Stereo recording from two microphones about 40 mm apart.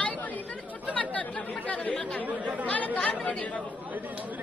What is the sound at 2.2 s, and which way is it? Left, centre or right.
Speech, right.